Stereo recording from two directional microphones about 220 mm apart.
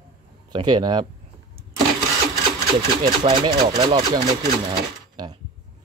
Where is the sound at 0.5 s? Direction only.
20° right (ahead or behind).